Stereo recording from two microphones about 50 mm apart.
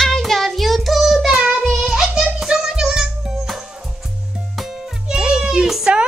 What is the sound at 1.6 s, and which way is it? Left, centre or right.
Child singing, centre.